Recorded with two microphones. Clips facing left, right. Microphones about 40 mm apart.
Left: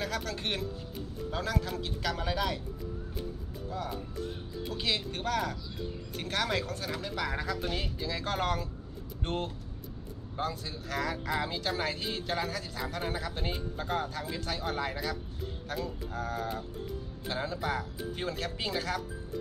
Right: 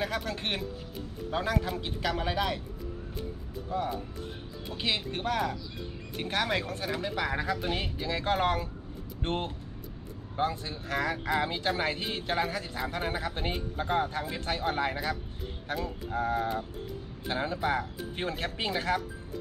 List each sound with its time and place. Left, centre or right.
0.0 s speech: centre
3.7 s speech: right